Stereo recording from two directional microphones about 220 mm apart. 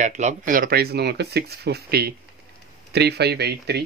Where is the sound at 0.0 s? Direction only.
35° right (ahead or behind); by 3.8 s 50° right (ahead or behind).